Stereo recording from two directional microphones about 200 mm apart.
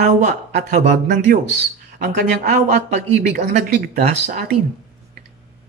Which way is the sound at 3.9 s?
45° right (ahead or behind).